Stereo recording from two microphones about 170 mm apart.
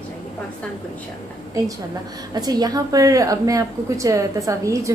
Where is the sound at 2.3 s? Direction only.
25° right (ahead or behind).